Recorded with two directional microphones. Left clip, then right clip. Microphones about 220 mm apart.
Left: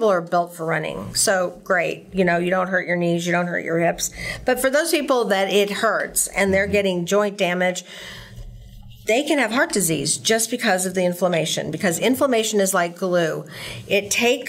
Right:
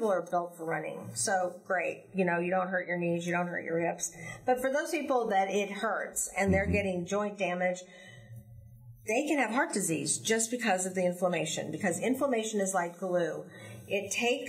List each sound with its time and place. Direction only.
0.0 s speech: 40° left (ahead or behind)
9.0 s speech: 35° left (ahead or behind)